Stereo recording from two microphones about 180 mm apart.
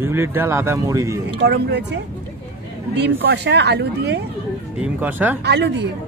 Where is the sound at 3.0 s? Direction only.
70° right (ahead or behind).